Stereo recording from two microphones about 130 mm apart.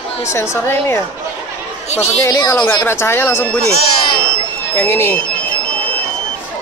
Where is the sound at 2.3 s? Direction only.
30° left (ahead or behind).